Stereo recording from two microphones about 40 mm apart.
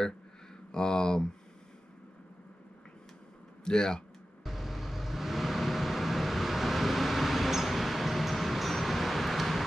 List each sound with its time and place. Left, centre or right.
0.7 s speech: centre
3.6 s speech: centre
4.5 s vehicle: centre